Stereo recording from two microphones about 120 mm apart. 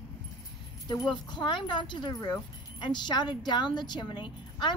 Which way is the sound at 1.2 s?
40° left (ahead or behind).